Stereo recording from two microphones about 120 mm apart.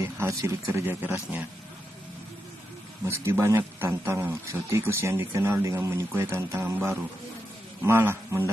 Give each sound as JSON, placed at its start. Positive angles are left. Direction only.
{"t": 0.2, "sound": "speech", "side_deg": -25}
{"t": 3.1, "sound": "speech", "side_deg": -25}